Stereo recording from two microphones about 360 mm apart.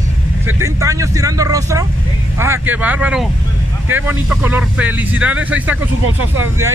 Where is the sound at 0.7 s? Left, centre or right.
Centre.